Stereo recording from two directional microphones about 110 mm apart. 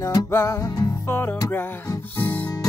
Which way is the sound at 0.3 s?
25° left (ahead or behind).